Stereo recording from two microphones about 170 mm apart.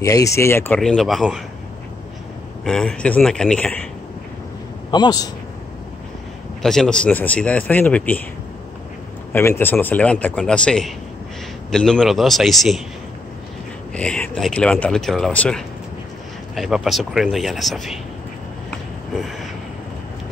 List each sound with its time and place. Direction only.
0.0 s speech: 20° left (ahead or behind)
0.7 s speech: centre (ahead or behind)
2.6 s speech: 5° left (ahead or behind)
4.9 s a man's voice: 25° left (ahead or behind)
6.6 s speech: centre (ahead or behind)
9.3 s speech: 15° left (ahead or behind)
13.9 s speech: 5° left (ahead or behind)
18.7 s a sound: centre (ahead or behind)